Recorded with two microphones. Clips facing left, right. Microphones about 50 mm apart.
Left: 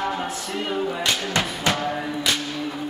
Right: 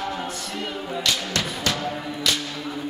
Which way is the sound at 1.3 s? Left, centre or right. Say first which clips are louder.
Left 3 dB; left.